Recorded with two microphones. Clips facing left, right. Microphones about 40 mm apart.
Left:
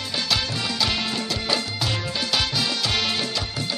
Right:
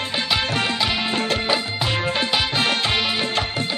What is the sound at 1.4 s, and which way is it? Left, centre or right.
Music, right.